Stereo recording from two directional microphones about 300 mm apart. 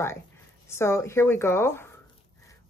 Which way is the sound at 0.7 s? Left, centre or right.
Centre.